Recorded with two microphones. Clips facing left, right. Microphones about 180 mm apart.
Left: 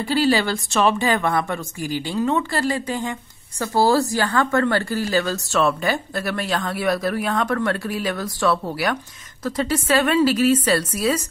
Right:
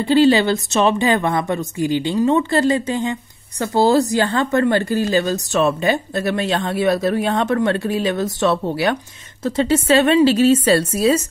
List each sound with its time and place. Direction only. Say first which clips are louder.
0.0 s speech: right 6 dB; 25° right (ahead or behind)